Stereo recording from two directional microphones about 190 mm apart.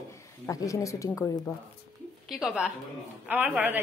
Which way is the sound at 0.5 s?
15° left (ahead or behind).